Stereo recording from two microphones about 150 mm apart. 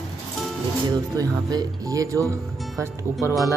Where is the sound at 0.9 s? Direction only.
25° right (ahead or behind).